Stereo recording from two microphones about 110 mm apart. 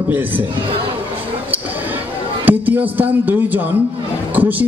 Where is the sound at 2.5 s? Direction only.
15° right (ahead or behind).